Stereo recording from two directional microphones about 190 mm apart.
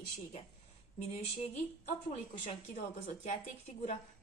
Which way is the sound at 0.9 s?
35° left (ahead or behind).